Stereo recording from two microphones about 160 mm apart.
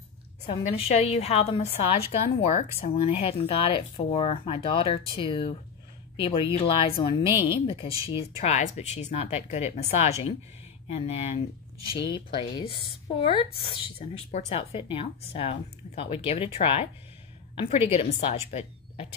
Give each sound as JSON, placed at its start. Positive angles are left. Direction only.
{"t": 0.5, "sound": "speech", "side_deg": 40}
{"t": 2.3, "sound": "speech", "side_deg": 45}
{"t": 3.0, "sound": "speech", "side_deg": 35}
{"t": 12.1, "sound": "speech", "side_deg": 30}